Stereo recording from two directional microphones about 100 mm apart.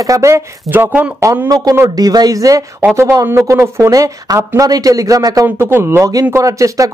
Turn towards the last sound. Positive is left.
turn(degrees=-35)  # may be behind; listen again after turning